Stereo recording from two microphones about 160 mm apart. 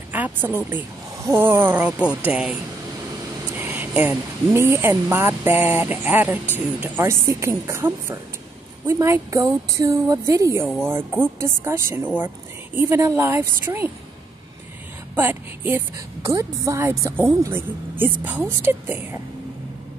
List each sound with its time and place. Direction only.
0.1 s a woman's voice: 10° right (ahead or behind)
15.1 s a woman's voice: 10° right (ahead or behind)